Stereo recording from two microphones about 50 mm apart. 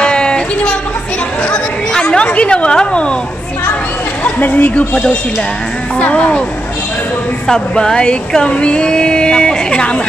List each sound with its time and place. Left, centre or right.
0.0 s a sound: centre
4.2 s speech: left
5.9 s a woman's voice: left
7.4 s a woman's voice: centre